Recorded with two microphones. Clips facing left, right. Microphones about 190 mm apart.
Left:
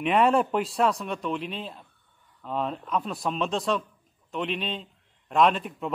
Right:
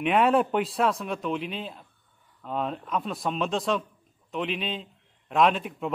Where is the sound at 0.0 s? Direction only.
Centre (ahead or behind).